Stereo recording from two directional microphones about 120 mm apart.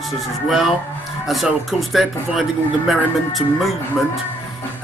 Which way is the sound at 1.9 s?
Centre (ahead or behind).